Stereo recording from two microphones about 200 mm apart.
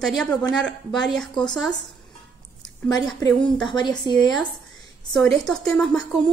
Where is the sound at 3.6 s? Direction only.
20° left (ahead or behind).